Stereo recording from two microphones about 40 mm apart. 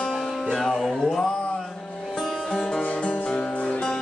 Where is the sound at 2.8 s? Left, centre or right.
Left.